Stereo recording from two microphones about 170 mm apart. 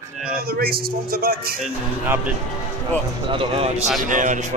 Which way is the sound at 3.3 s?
35° right (ahead or behind).